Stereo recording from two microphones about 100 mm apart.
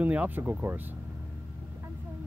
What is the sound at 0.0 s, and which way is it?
Speech, 15° right (ahead or behind).